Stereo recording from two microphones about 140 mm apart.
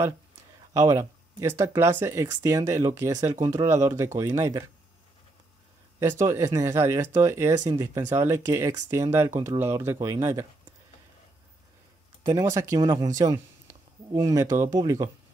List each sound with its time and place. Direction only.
0.7 s speech: 20° right (ahead or behind)
5.9 s speech: 20° right (ahead or behind)
12.3 s speech: 25° right (ahead or behind)